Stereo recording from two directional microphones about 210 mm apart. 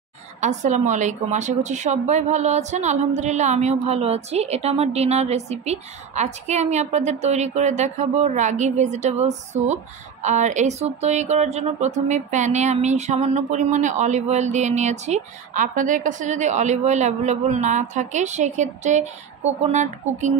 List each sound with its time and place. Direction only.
0.4 s speech: 35° right (ahead or behind)